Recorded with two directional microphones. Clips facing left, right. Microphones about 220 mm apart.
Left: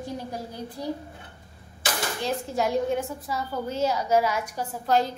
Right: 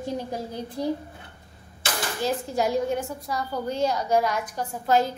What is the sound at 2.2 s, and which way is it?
A woman's voice, centre (ahead or behind).